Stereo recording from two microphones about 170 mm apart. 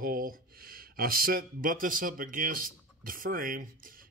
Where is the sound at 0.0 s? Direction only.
55° right (ahead or behind).